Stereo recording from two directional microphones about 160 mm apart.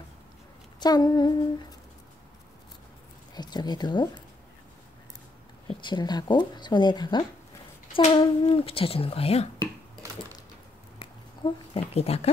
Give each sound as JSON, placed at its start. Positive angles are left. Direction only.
{"t": 0.7, "sound": "speech", "side_deg": 25}
{"t": 3.3, "sound": "speech", "side_deg": 25}
{"t": 5.7, "sound": "speech", "side_deg": 30}
{"t": 11.0, "sound": "a sound", "side_deg": 30}